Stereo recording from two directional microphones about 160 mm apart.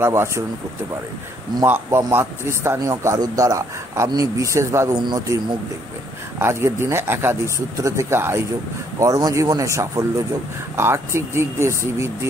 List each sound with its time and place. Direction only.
0.0 s speech: 15° right (ahead or behind)
1.6 s a man's voice: 15° right (ahead or behind)